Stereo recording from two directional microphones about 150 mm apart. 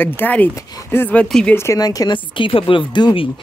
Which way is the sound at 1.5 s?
20° left (ahead or behind).